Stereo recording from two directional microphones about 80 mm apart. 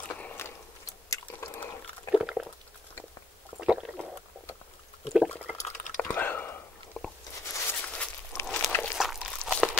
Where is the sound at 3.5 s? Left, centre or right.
Centre.